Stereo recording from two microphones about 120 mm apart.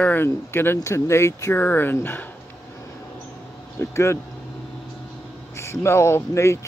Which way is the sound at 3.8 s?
20° left (ahead or behind).